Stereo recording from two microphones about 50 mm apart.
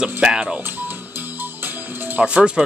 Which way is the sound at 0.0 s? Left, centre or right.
Centre.